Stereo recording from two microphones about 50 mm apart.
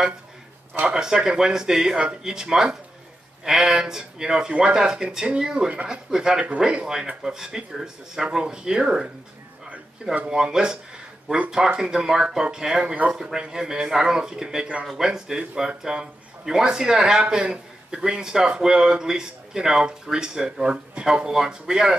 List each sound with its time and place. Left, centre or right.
0.8 s speech: centre